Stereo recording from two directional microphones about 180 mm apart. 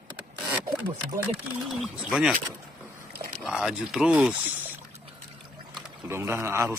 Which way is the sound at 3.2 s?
45° right (ahead or behind).